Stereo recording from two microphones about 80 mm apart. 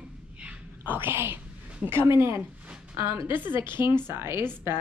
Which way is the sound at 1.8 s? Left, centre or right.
Right.